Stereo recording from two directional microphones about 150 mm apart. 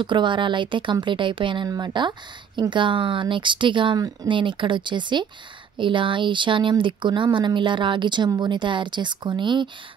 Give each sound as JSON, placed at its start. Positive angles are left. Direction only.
{"t": 0.0, "sound": "speech", "side_deg": -30}